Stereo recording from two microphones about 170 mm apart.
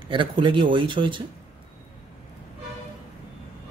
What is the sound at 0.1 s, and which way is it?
Speech, 30° right (ahead or behind).